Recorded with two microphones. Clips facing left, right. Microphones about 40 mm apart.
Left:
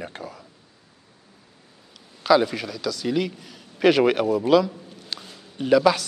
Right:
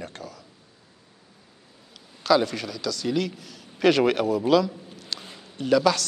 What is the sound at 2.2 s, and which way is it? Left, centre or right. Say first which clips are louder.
A man's voice: left 3 dB; centre.